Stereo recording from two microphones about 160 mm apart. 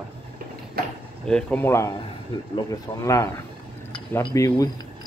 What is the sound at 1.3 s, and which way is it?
Speech, 5° left (ahead or behind).